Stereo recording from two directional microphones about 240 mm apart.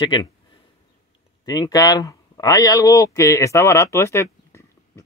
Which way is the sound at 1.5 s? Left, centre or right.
Centre.